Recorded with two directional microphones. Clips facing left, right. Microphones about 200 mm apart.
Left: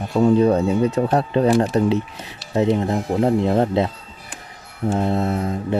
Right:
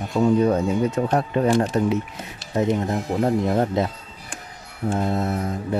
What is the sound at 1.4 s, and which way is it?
Speech, 5° left (ahead or behind).